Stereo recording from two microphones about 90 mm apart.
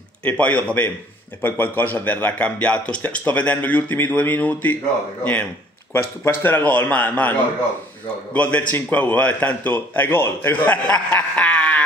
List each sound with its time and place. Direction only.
0.2 s a man's voice: 20° left (ahead or behind)